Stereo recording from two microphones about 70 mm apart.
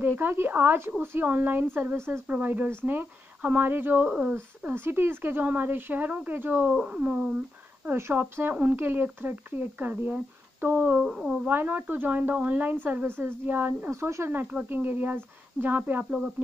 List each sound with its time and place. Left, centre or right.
0.0 s speech: right
2.0 s speech: right
2.2 s speech: right
4.7 s speech: right
11.1 s speech: centre
11.4 s speech: right
13.8 s speech: right